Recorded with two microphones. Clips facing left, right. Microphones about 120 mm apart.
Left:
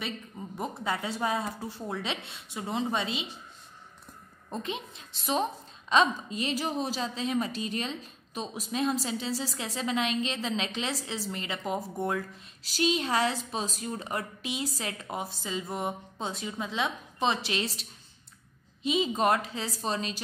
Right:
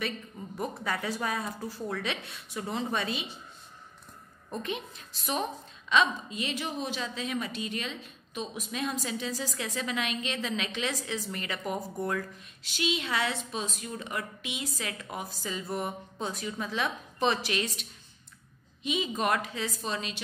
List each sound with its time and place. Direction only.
0.6 s speech: 25° left (ahead or behind)
4.5 s speech: 25° left (ahead or behind)
5.9 s a woman's voice: 35° left (ahead or behind)
12.6 s a woman's voice: 35° left (ahead or behind)